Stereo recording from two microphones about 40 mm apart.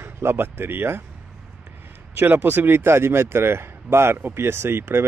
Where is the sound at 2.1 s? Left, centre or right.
Right.